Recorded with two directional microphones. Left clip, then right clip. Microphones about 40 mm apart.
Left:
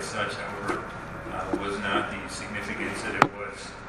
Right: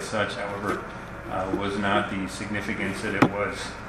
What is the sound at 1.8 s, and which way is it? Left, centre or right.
Speech, right.